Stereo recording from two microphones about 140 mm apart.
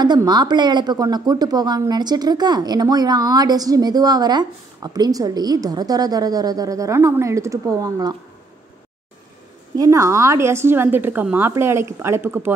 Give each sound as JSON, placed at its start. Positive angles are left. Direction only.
{"t": 0.0, "sound": "speech", "side_deg": -30}
{"t": 9.8, "sound": "a woman's voice", "side_deg": -25}